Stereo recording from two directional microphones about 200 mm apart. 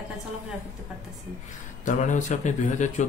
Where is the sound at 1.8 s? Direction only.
40° left (ahead or behind).